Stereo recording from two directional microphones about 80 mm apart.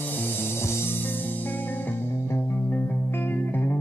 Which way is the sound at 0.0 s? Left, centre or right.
Left.